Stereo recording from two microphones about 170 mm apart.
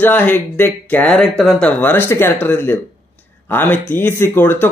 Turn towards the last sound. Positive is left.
turn(degrees=15)  # may be behind; listen again after turning